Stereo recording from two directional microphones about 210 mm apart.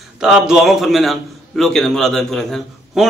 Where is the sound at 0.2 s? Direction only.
5° right (ahead or behind).